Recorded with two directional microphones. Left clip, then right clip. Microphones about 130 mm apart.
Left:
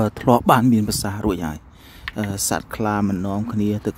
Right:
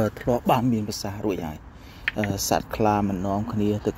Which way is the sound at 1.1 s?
55° left (ahead or behind).